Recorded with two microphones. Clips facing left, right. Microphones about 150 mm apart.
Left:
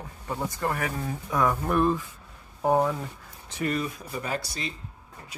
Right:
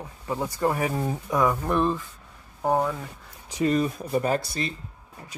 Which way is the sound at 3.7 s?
40° right (ahead or behind).